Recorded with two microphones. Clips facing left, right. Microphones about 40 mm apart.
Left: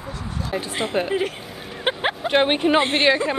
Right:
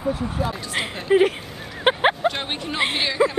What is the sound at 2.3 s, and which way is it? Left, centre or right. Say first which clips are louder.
Speech: left 11 dB; left.